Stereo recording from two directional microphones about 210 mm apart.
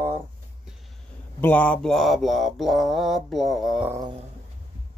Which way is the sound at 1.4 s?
5° left (ahead or behind).